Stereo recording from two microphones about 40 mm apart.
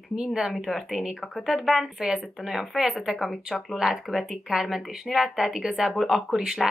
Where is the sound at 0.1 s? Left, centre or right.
Centre.